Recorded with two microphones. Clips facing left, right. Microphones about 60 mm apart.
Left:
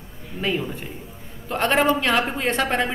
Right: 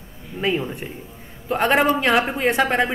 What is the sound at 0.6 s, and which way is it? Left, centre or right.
Speech, right.